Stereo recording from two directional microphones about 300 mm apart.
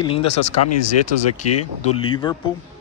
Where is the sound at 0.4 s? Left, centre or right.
Left.